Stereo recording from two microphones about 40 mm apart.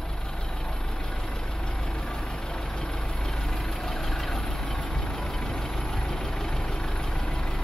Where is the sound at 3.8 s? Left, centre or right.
Centre.